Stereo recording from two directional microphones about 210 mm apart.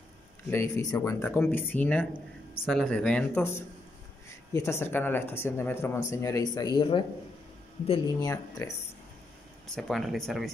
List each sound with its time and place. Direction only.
0.5 s speech: 15° left (ahead or behind)
8.3 s speech: 15° left (ahead or behind)
9.8 s speech: centre (ahead or behind)